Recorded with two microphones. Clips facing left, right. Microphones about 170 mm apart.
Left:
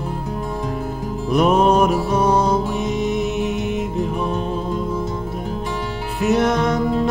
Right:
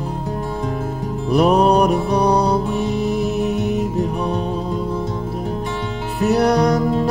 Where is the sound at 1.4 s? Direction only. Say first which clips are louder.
Right 1 dB; 35° right (ahead or behind).